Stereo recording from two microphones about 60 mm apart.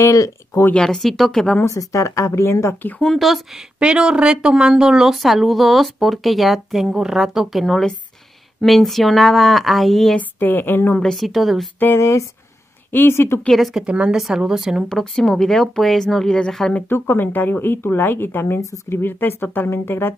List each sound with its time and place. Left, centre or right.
0.0 s a woman's voice: left
0.7 s speech: centre
1.8 s a woman's voice: left
3.2 s speech: centre
3.8 s speech: centre
10.1 s a woman's voice: left
11.0 s speech: centre
11.8 s speech: left
13.7 s a woman's voice: centre
14.1 s speech: centre
14.9 s speech: centre
17.0 s a woman's voice: left
18.6 s a woman's voice: left
18.9 s a woman's voice: left